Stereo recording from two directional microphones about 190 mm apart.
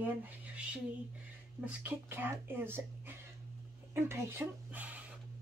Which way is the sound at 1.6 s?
10° right (ahead or behind).